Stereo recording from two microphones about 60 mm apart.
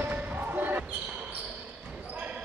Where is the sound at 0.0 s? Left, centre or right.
Right.